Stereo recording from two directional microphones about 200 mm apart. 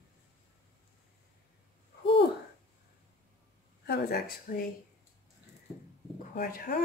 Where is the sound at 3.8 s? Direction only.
55° left (ahead or behind).